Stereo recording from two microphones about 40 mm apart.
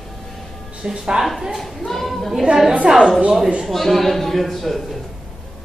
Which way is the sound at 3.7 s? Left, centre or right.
Centre.